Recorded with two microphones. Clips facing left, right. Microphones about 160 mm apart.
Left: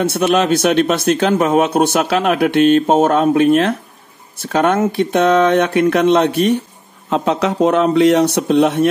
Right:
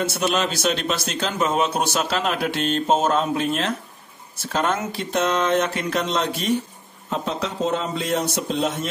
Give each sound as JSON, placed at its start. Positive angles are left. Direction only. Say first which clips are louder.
{"t": 0.0, "sound": "a man's voice", "louder": "left 8 dB", "side_deg": 60}
{"t": 7.1, "sound": "speech", "louder": "left 10 dB", "side_deg": 75}